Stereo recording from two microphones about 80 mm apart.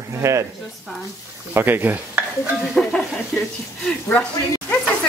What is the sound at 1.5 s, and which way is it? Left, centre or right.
Speech, right.